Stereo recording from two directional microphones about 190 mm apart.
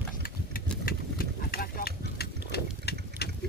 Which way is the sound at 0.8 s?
50° left (ahead or behind).